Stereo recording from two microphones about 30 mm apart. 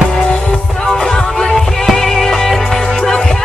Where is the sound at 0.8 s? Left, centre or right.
Left.